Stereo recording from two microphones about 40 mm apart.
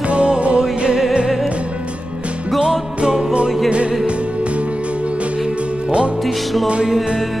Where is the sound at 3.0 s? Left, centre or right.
Right.